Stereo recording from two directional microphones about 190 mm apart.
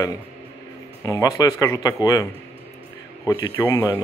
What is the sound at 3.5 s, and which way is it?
Speech, 10° left (ahead or behind).